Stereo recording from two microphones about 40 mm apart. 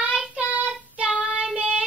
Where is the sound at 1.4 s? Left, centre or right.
Centre.